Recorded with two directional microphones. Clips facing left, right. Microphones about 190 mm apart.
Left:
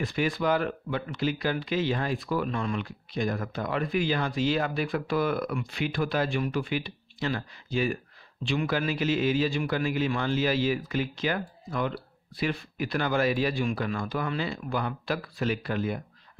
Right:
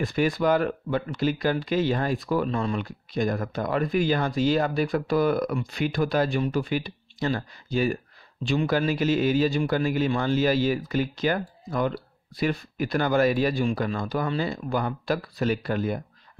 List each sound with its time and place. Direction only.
0.0 s speech: 45° right (ahead or behind)